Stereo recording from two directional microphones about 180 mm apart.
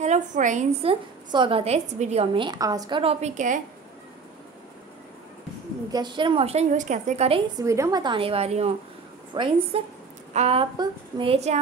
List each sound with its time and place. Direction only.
0.0 s a woman's voice: 40° right (ahead or behind)
5.9 s a woman's voice: 25° right (ahead or behind)
7.5 s a woman's voice: 15° right (ahead or behind); by 11.5 s 35° right (ahead or behind)